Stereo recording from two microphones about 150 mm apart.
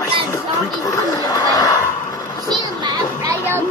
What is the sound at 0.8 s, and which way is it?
Chuckle, 25° left (ahead or behind).